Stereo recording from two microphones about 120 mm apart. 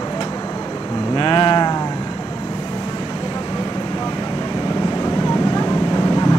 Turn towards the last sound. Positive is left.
turn(degrees=40)  # may be behind; listen again after turning